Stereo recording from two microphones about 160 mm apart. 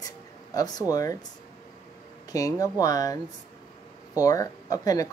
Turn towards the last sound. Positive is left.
turn(degrees=20)  # may be behind; listen again after turning